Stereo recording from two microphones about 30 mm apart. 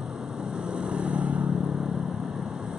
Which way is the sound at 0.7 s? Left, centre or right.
Right.